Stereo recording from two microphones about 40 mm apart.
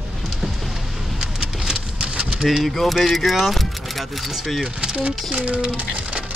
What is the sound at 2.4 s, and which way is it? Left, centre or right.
Speech, centre.